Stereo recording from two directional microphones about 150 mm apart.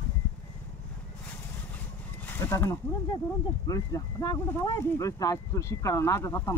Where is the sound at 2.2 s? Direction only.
15° left (ahead or behind).